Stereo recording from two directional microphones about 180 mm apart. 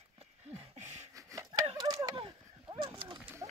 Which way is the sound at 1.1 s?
20° right (ahead or behind).